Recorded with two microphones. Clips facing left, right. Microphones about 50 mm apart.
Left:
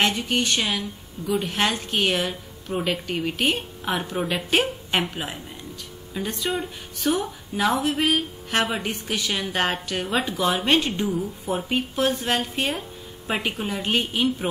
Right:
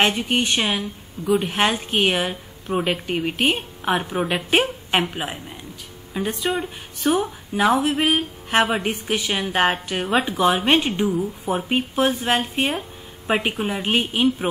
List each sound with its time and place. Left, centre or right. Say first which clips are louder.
0.0 s a woman's voice: right 3 dB; right